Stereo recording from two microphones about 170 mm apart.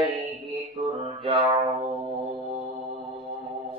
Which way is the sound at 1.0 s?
35° right (ahead or behind).